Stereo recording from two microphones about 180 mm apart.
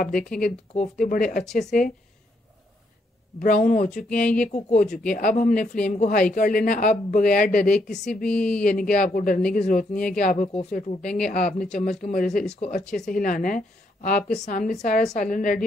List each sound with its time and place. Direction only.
0.1 s speech: 5° left (ahead or behind)
0.7 s speech: 45° left (ahead or behind)
1.4 s speech: centre (ahead or behind)
3.3 s speech: 50° left (ahead or behind)
7.6 s speech: 5° left (ahead or behind)
8.6 s speech: 50° left (ahead or behind)
11.0 s speech: 5° left (ahead or behind)
11.2 s speech: 45° left (ahead or behind)
11.5 s speech: 5° left (ahead or behind)
12.0 s speech: 45° left (ahead or behind)
12.8 s speech: 5° left (ahead or behind)
13.1 s speech: 50° left (ahead or behind)